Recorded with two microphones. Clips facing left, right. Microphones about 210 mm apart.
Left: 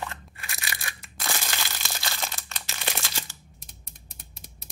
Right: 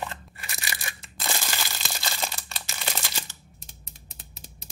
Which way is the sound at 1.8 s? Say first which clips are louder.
Right 2 dB; centre (ahead or behind).